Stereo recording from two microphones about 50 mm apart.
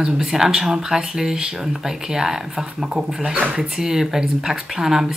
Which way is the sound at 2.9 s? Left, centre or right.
Centre.